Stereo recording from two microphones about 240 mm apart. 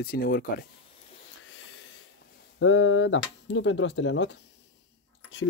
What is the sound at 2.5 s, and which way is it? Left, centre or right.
Speech, left.